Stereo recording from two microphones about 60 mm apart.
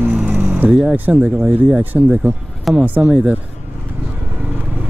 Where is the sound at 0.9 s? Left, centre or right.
Right.